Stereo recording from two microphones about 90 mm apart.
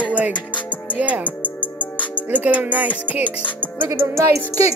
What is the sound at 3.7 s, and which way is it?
Music, 25° right (ahead or behind).